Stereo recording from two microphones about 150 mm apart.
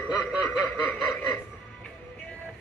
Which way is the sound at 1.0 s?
15° left (ahead or behind).